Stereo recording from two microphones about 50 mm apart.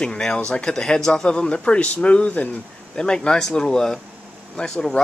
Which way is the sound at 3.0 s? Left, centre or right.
Centre.